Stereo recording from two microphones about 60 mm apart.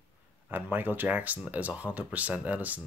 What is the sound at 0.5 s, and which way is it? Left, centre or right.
Speech, right.